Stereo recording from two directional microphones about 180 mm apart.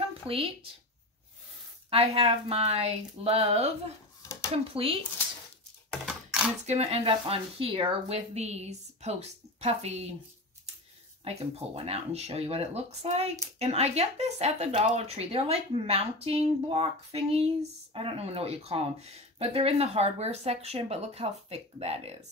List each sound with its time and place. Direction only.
0.3 s speech: 30° right (ahead or behind)
1.9 s speech: 30° right (ahead or behind)
4.2 s a sound: 20° left (ahead or behind)
4.6 s speech: 30° right (ahead or behind)
5.9 s typing: 5° right (ahead or behind)
6.6 s speech: 35° right (ahead or behind)
11.2 s speech: 35° right (ahead or behind)